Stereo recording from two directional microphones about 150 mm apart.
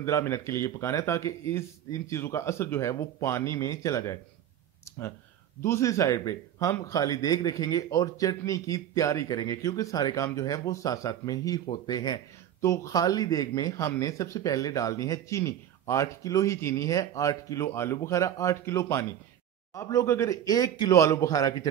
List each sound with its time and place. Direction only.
0.0 s speech: 20° left (ahead or behind)
5.6 s speech: 20° left (ahead or behind)